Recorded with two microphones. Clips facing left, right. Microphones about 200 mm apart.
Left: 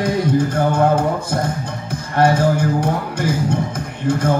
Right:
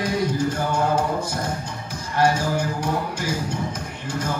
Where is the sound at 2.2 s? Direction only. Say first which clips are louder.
Left 5 dB; 55° left (ahead or behind).